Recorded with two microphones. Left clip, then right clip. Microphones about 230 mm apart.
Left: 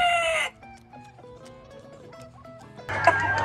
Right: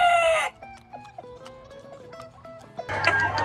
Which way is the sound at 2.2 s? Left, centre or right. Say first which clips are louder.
Right 3 dB; centre.